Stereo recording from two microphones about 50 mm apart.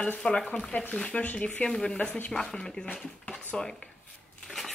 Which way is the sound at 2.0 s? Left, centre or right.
Left.